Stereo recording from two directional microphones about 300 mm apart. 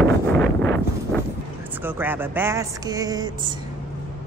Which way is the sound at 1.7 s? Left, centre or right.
Centre.